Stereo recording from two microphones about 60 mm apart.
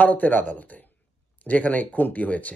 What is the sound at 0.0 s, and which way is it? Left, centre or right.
Speech, left.